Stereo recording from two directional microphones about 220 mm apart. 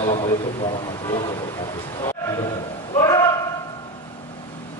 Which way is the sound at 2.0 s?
15° left (ahead or behind).